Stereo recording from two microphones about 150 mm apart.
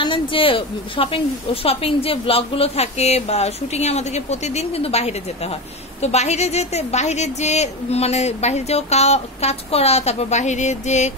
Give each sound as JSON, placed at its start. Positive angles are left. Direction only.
{"t": 0.0, "sound": "a woman's voice", "side_deg": 35}